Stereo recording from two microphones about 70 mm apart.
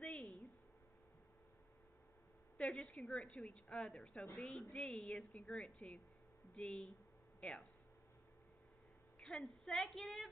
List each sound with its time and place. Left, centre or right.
2.5 s a woman's voice: centre
9.2 s a woman's voice: centre